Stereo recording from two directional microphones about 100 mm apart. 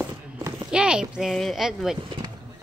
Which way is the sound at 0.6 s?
10° right (ahead or behind).